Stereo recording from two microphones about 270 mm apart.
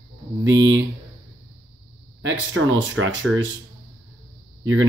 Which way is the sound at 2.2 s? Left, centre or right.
Right.